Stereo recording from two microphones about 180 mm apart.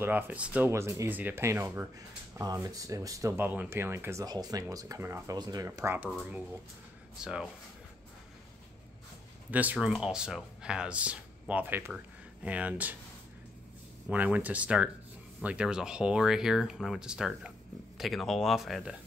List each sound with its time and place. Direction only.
0.0 s speech: 10° right (ahead or behind)
6.0 s speech: centre (ahead or behind)
9.5 s speech: 10° right (ahead or behind)
14.0 s speech: 10° right (ahead or behind)